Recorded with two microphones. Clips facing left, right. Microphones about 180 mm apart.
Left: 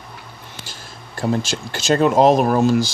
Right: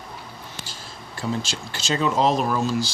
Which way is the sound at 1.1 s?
50° left (ahead or behind).